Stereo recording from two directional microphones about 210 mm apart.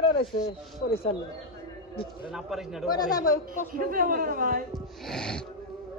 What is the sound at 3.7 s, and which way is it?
Speech, 40° right (ahead or behind).